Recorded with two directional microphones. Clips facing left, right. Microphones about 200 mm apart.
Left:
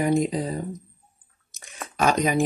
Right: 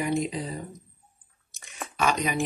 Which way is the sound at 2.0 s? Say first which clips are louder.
Left 5 dB; 45° left (ahead or behind).